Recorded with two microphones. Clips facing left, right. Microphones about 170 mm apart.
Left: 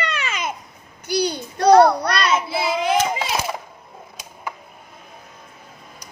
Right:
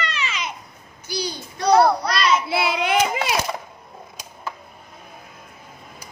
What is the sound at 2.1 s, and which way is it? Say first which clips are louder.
Child singing: even; 55° left (ahead or behind).